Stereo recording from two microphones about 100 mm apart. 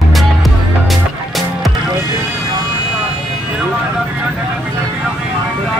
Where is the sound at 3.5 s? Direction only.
5° right (ahead or behind).